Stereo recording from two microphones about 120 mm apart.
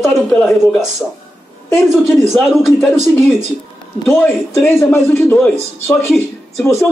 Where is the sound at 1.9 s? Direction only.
Centre (ahead or behind).